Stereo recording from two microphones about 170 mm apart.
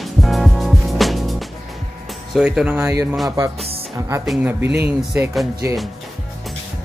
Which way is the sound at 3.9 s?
15° right (ahead or behind).